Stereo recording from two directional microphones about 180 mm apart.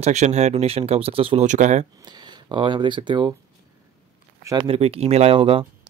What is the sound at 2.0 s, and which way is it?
Speech, 25° right (ahead or behind).